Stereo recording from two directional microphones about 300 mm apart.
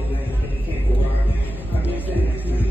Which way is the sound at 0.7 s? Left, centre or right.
Centre.